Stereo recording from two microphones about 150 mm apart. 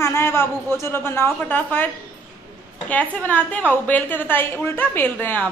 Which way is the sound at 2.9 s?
10° left (ahead or behind).